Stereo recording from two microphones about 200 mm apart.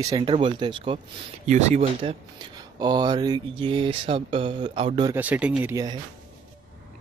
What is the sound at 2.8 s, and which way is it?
Speech, 20° right (ahead or behind).